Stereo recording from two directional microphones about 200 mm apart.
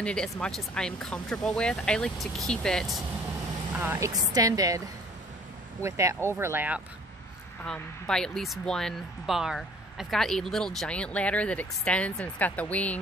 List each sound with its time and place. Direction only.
0.0 s speech: 5° left (ahead or behind)
3.7 s speech: 10° right (ahead or behind)
7.6 s speech: 5° left (ahead or behind)